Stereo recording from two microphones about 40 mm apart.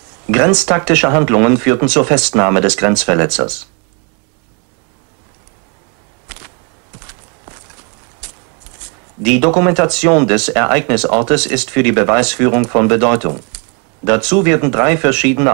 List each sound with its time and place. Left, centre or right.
0.1 s speech: centre
1.6 s speech: centre
6.9 s walk: centre
9.2 s speech: centre
9.7 s speech: centre
11.9 s speech: centre
12.2 s speech: centre
14.0 s speech: centre
14.4 s speech: right